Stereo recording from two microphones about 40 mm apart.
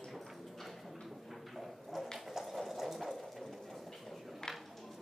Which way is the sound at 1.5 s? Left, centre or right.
Centre.